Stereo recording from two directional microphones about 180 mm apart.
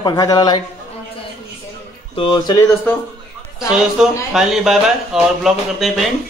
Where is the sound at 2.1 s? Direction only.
25° left (ahead or behind).